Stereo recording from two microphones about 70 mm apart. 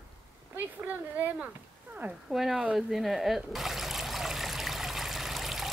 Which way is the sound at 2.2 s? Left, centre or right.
Centre.